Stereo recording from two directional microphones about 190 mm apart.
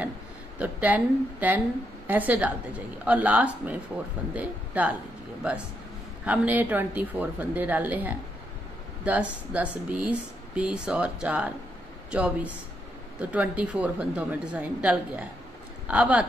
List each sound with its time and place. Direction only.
0.6 s a woman's voice: 10° right (ahead or behind)
6.2 s a woman's voice: 10° right (ahead or behind)